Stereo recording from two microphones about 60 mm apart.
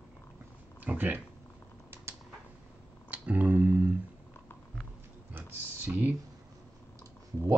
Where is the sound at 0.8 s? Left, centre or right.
Right.